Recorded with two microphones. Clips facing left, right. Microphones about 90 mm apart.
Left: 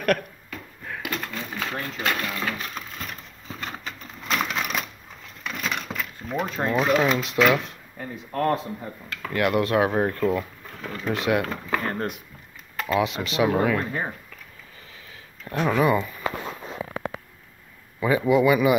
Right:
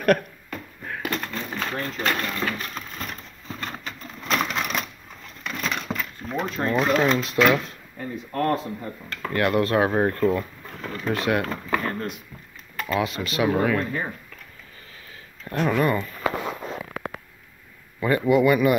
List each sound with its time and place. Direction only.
0.0 s a sound: 5° right (ahead or behind)
3.4 s typewriter: 10° left (ahead or behind)
5.4 s a sound: 10° left (ahead or behind)
6.7 s speech: 5° left (ahead or behind)
9.8 s speech: 10° right (ahead or behind)
10.1 s a sound: centre (ahead or behind)
10.9 s speech: 15° left (ahead or behind)
11.8 s speech: 30° left (ahead or behind)
12.8 s speech: 20° left (ahead or behind)
15.5 s speech: 5° left (ahead or behind)
18.0 s speech: centre (ahead or behind)